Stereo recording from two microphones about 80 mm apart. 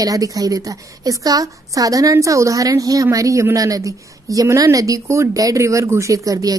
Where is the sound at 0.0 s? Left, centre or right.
Right.